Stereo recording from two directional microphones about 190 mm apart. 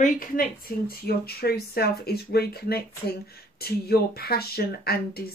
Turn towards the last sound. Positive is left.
turn(degrees=55)  # may be behind; listen again after turning